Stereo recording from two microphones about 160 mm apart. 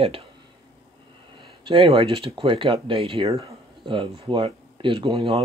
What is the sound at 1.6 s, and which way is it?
Speech, 30° right (ahead or behind).